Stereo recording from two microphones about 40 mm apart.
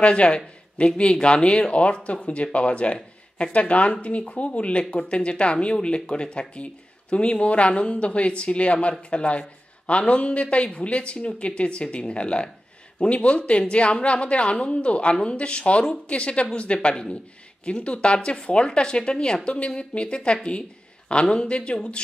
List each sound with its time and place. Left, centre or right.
0.0 s a man's voice: left